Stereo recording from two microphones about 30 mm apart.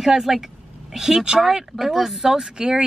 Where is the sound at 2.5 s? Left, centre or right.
Right.